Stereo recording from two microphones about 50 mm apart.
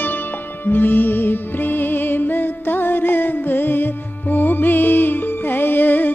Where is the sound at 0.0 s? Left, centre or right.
Left.